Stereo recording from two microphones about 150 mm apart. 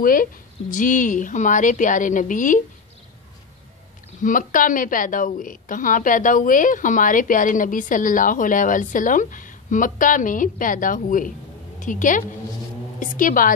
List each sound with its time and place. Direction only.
0.0 s a woman's voice: 70° left (ahead or behind)
4.2 s a woman's voice: 65° left (ahead or behind)